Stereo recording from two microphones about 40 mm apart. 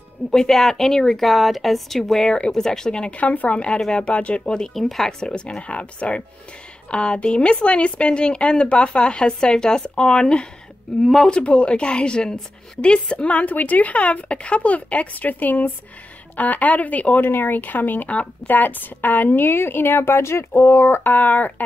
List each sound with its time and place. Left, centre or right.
0.3 s speech: centre
1.2 s speech: centre
3.0 s a woman's voice: left
4.7 s speech: centre
5.2 s a woman's voice: left
11.0 s speech: centre
11.2 s a woman's voice: left
17.2 s a woman's voice: left
21.0 s speech: left